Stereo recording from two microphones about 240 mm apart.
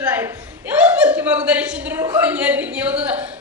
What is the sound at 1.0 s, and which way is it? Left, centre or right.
A man's voice, centre.